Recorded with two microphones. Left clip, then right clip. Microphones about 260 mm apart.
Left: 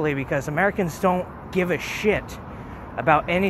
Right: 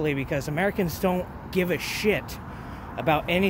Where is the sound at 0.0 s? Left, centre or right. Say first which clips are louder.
Left 3 dB; centre.